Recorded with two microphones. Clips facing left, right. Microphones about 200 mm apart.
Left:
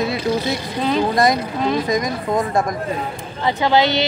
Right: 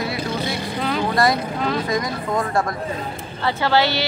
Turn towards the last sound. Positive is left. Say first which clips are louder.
# left 3 dB
turn(degrees=20)  # may be behind; listen again after turning